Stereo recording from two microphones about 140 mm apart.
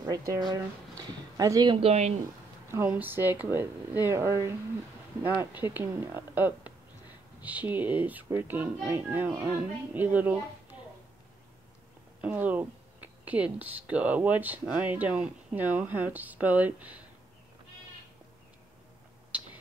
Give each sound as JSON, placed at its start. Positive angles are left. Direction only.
{"t": 0.3, "sound": "speech", "side_deg": -30}
{"t": 1.8, "sound": "speech", "side_deg": -50}
{"t": 2.7, "sound": "speech", "side_deg": -15}
{"t": 12.2, "sound": "speech", "side_deg": -10}